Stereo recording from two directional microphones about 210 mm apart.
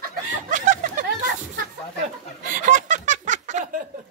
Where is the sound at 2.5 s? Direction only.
40° right (ahead or behind).